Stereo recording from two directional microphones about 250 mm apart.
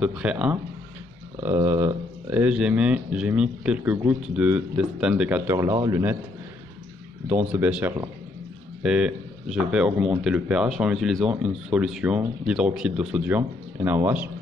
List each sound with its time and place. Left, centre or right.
0.0 s speech: centre
7.6 s speech: centre